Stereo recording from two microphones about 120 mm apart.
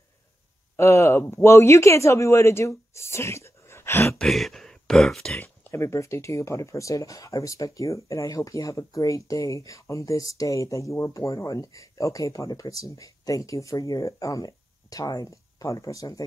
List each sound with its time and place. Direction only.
0.7 s speech: 25° left (ahead or behind)
4.2 s speech: centre (ahead or behind); by 16.3 s 30° left (ahead or behind)